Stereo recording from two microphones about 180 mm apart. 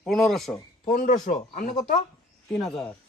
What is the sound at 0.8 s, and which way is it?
Speech, 50° left (ahead or behind).